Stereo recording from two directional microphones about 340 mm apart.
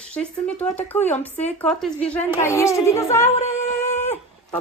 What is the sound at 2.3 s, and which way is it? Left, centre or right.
Speech, centre.